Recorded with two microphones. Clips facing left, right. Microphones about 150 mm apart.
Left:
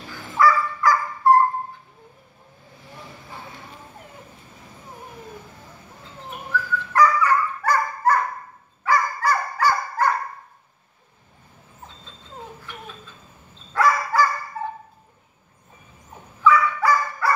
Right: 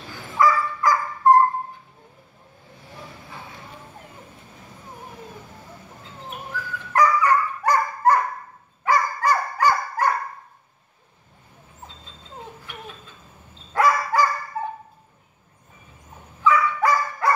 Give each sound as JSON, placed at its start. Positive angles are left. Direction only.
{"t": 0.4, "sound": "dog", "side_deg": -15}
{"t": 6.5, "sound": "dog", "side_deg": -15}
{"t": 8.8, "sound": "fowl", "side_deg": -15}
{"t": 13.7, "sound": "bow-wow", "side_deg": -15}
{"t": 16.4, "sound": "dog", "side_deg": -20}